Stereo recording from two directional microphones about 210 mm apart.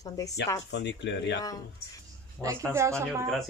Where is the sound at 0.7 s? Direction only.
55° left (ahead or behind).